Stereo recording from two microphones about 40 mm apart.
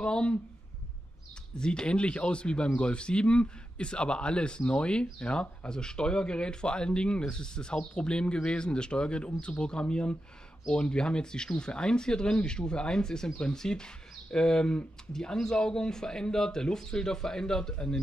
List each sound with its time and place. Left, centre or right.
0.0 s speech: left
1.6 s speech: left